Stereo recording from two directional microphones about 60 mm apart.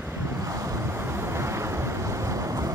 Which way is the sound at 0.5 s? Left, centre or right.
Right.